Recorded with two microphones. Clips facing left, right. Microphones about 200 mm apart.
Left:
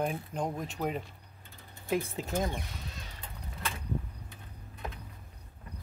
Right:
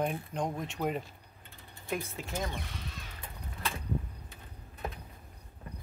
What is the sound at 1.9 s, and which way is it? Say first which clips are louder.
Speech: left 5 dB; 25° left (ahead or behind).